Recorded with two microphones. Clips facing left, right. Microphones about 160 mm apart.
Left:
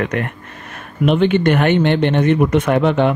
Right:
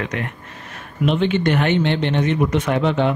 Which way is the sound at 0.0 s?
55° left (ahead or behind).